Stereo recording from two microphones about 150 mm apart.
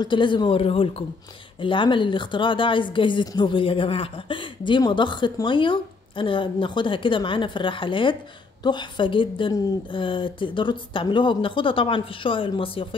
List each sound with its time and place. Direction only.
0.0 s speech: 30° left (ahead or behind)